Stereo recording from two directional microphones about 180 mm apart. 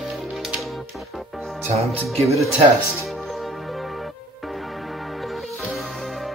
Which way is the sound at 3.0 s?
Centre (ahead or behind).